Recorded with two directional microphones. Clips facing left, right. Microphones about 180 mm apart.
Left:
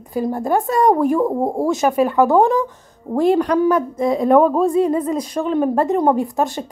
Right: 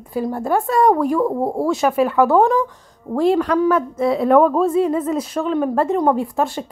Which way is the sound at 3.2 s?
40° left (ahead or behind).